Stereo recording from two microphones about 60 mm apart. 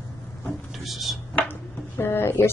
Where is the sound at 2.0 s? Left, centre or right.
Left.